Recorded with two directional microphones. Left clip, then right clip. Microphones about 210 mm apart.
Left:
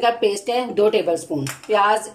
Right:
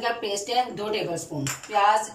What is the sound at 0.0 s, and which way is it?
A woman's voice, 55° left (ahead or behind).